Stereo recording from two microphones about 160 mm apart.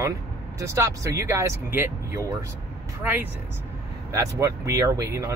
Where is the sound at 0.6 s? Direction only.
20° right (ahead or behind).